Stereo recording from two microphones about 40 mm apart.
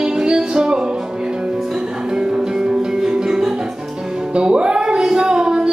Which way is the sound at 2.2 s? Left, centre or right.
Centre.